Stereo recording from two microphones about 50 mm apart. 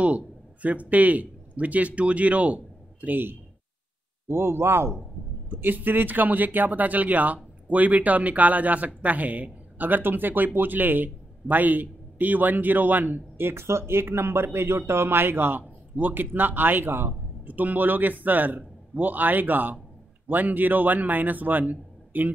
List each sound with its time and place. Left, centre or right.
0.0 s speech: right
4.3 s speech: right
5.5 s speech: right
17.5 s speech: right